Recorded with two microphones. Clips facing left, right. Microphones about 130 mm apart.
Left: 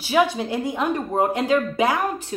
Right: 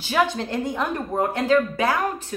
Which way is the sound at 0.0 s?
10° left (ahead or behind).